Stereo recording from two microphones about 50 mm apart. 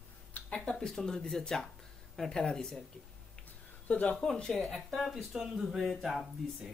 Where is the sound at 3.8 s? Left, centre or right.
Left.